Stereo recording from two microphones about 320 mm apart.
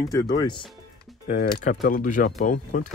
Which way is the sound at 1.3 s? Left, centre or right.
Left.